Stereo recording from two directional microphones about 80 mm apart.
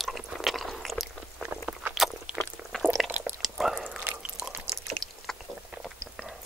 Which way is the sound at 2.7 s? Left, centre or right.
Centre.